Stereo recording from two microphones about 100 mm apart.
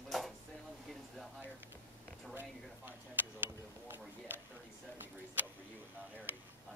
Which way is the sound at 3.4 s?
20° right (ahead or behind).